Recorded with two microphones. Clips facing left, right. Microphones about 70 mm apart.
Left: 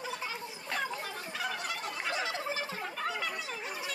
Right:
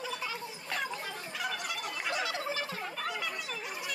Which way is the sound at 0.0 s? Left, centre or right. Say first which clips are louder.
Right 1 dB; left.